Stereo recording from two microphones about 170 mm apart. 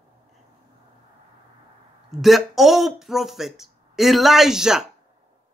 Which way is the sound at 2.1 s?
Centre (ahead or behind).